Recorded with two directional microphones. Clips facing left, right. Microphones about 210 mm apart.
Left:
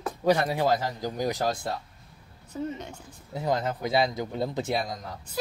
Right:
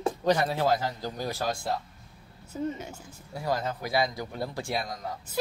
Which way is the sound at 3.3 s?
20° left (ahead or behind).